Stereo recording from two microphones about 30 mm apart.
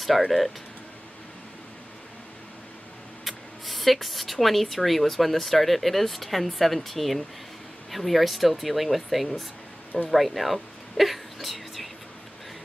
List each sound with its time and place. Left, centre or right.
0.1 s speech: centre
3.3 s speech: centre